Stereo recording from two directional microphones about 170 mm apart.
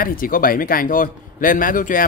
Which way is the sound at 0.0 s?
55° left (ahead or behind).